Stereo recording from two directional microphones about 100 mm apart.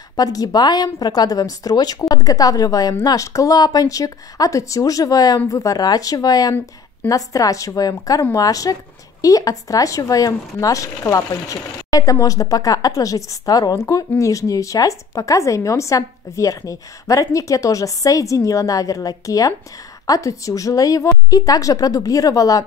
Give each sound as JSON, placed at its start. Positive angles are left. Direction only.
{"t": 0.1, "sound": "speech", "side_deg": 40}